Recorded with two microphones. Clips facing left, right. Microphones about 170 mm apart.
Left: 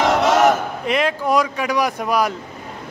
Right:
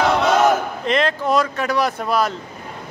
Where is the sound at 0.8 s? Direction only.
10° left (ahead or behind).